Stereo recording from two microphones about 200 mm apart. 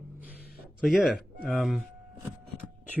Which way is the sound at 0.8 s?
Centre (ahead or behind).